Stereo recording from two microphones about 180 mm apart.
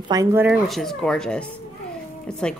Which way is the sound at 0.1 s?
15° right (ahead or behind).